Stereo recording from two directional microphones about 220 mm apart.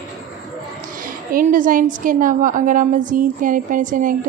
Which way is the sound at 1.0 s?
40° right (ahead or behind).